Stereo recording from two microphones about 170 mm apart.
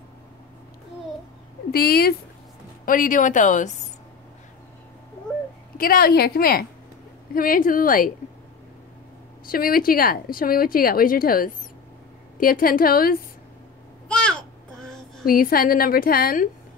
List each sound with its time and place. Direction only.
1.7 s a woman's voice: 65° left (ahead or behind); by 3.7 s 50° left (ahead or behind)
5.8 s a woman's voice: 60° left (ahead or behind)
9.5 s a woman's voice: 60° left (ahead or behind)
14.0 s child singing: 5° left (ahead or behind)
15.2 s a woman's voice: 60° left (ahead or behind)